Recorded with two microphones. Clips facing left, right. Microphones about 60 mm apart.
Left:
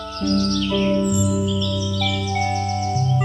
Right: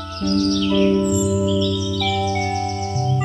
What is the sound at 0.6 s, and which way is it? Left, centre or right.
Music, centre.